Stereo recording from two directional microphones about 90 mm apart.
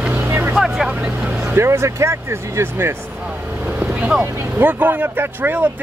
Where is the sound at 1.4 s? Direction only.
30° right (ahead or behind).